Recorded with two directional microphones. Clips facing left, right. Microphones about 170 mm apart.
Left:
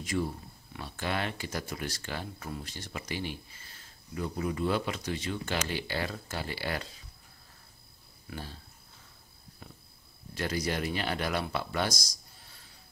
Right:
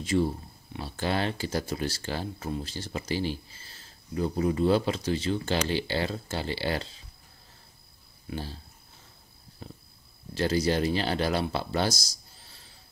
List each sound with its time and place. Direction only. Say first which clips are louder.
0.0 s speech: right 6 dB; 30° right (ahead or behind)
8.3 s speech: right 6 dB; 30° right (ahead or behind)
9.6 s a sound: right 6 dB; 30° right (ahead or behind)
10.3 s speech: right 7 dB; 30° right (ahead or behind)